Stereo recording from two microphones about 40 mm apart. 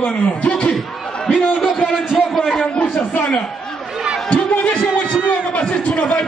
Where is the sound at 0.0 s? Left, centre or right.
Left.